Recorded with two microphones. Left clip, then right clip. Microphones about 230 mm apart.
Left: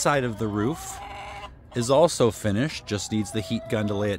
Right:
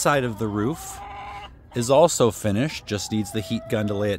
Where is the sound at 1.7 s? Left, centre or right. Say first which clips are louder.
Right 2 dB; centre.